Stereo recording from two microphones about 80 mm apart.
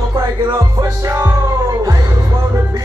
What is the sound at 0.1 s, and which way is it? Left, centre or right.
Music, right.